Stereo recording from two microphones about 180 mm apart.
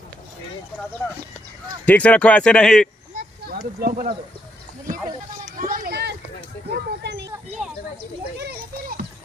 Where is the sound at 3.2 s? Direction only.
55° right (ahead or behind).